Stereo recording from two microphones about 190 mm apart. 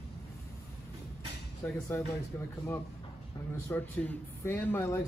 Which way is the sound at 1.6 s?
15° left (ahead or behind).